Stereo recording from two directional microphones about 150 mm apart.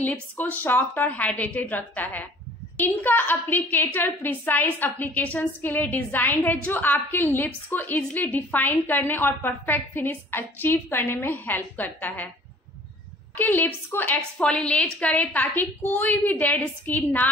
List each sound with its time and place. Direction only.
0.0 s a woman's voice: 10° left (ahead or behind)
13.4 s a woman's voice: 10° left (ahead or behind)